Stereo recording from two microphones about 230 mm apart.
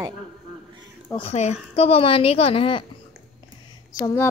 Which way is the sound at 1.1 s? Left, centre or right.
Left.